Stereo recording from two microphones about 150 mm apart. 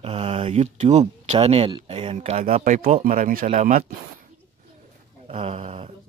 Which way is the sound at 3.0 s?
60° right (ahead or behind).